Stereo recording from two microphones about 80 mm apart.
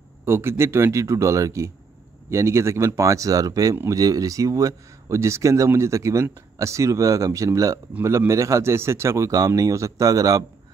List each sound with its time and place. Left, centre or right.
0.2 s speech: right